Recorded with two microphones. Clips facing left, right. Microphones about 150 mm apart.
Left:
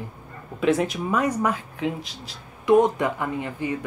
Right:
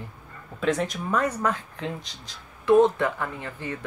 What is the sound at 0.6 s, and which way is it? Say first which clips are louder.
Speech: left 4 dB; 5° left (ahead or behind).